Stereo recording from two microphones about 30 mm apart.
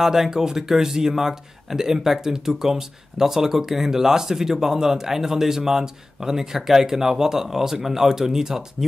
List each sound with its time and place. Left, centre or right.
0.0 s a man's voice: centre